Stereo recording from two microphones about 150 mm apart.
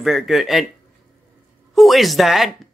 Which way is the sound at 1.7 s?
Centre (ahead or behind).